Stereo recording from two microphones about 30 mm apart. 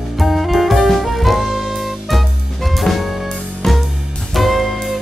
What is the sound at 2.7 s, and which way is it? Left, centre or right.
Music, centre.